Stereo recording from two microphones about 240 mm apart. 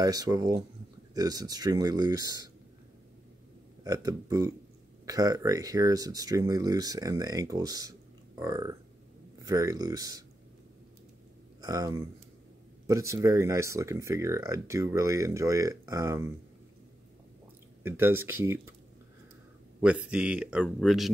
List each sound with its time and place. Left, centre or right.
0.0 s speech: centre
3.8 s speech: centre
11.6 s speech: centre
17.8 s speech: centre
19.8 s speech: centre